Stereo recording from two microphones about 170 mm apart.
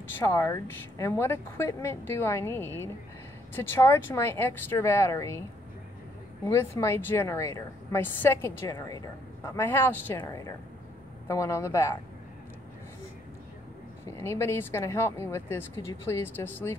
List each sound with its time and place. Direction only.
0.1 s a woman's voice: 15° left (ahead or behind)
6.4 s a woman's voice: 15° left (ahead or behind)
14.0 s a woman's voice: 15° left (ahead or behind)